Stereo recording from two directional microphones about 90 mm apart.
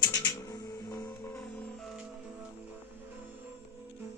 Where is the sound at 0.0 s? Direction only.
50° left (ahead or behind).